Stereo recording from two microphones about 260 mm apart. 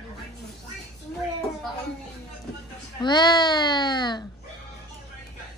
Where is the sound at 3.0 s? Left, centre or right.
Centre.